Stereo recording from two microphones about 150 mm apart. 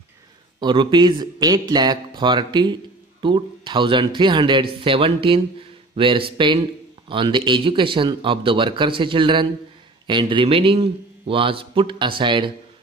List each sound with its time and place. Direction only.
0.6 s speech: 30° right (ahead or behind)